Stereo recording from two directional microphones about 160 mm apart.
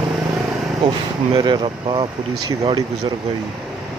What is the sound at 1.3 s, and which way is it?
Speech, 30° right (ahead or behind).